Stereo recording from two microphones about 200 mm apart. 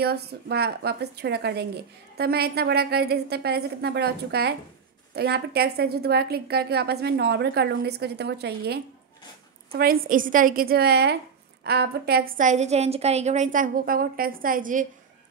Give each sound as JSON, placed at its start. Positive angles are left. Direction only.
{"t": 0.0, "sound": "a woman's voice", "side_deg": -55}